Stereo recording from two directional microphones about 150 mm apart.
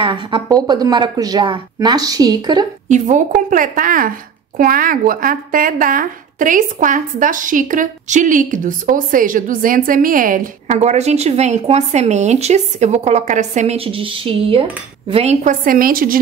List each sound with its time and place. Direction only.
0.0 s a woman's voice: 35° right (ahead or behind)
2.9 s speech: 60° right (ahead or behind)
10.8 s speech: 45° right (ahead or behind)
15.4 s a woman's voice: 70° right (ahead or behind)